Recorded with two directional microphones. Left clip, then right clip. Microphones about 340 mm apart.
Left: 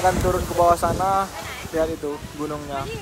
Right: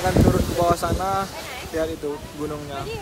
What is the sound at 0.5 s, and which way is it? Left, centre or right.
Speech, centre.